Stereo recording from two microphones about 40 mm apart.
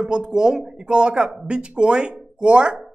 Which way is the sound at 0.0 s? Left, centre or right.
Centre.